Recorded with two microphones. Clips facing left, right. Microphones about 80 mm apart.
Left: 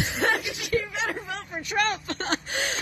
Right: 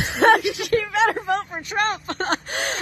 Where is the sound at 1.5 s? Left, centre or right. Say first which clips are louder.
Right 3 dB; right.